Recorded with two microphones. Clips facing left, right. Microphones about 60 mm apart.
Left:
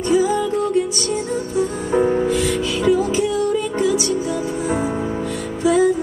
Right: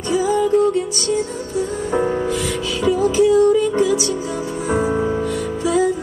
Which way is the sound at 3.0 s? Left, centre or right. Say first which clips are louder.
Right 5 dB; right.